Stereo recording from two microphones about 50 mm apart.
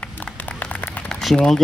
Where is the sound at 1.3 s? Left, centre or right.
Centre.